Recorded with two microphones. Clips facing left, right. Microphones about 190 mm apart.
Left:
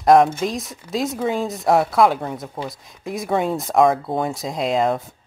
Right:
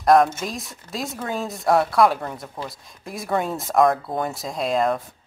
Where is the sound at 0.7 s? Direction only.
20° left (ahead or behind).